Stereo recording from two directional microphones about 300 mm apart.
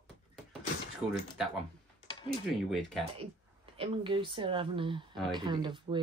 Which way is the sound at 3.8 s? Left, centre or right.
Centre.